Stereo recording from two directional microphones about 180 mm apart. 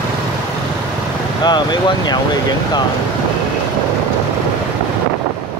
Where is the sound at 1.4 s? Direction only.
25° left (ahead or behind).